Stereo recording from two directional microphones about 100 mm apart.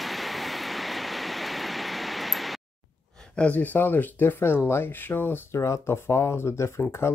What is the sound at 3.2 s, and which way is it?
Speech, 15° left (ahead or behind).